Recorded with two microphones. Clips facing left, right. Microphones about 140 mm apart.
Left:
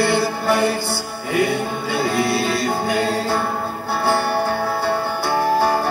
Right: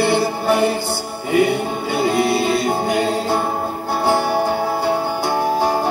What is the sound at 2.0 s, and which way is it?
Music, 20° right (ahead or behind).